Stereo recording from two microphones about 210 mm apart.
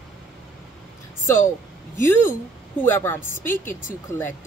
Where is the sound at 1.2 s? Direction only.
10° left (ahead or behind).